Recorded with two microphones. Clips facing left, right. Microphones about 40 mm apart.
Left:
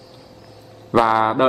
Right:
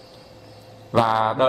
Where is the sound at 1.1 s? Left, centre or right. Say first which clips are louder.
Left 3 dB; centre.